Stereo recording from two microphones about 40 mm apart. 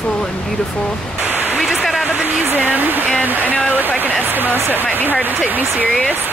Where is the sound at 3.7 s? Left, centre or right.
Right.